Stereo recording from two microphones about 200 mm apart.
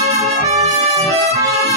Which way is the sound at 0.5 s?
30° right (ahead or behind).